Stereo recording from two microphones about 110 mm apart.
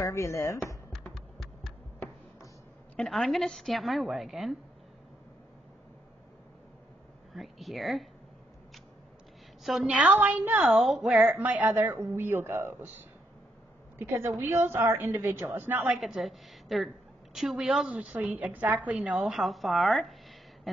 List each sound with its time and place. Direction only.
0.0 s speech: 25° left (ahead or behind)
3.0 s a woman's voice: centre (ahead or behind)
7.3 s a woman's voice: centre (ahead or behind)
9.6 s speech: 5° right (ahead or behind)
10.8 s a woman's voice: centre (ahead or behind)
11.3 s speech: 15° right (ahead or behind)
13.9 s a woman's voice: 20° right (ahead or behind)
15.9 s a woman's voice: centre (ahead or behind)